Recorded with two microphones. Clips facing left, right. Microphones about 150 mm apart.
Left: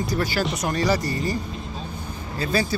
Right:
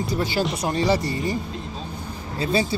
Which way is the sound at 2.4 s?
25° right (ahead or behind).